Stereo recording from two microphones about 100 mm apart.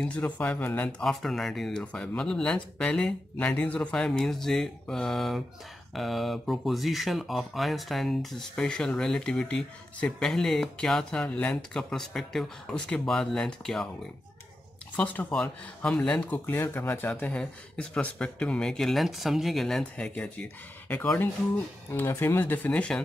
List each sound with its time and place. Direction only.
0.0 s speech: 10° left (ahead or behind)
15.0 s speech: 15° left (ahead or behind)
17.1 s speech: 10° left (ahead or behind)